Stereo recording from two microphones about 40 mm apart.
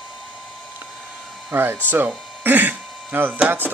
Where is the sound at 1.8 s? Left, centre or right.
Right.